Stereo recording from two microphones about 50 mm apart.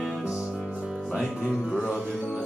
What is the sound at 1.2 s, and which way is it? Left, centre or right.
Music, centre.